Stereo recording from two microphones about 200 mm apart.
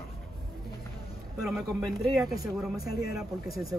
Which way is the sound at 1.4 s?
Centre (ahead or behind).